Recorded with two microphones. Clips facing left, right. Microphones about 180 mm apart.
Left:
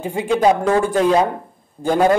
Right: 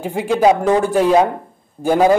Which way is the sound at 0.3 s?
15° right (ahead or behind).